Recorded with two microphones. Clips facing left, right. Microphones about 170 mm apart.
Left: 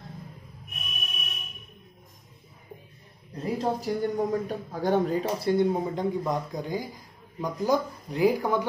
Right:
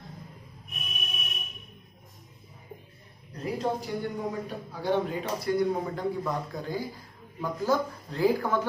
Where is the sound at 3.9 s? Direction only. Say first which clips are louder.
Left 6 dB; 40° left (ahead or behind).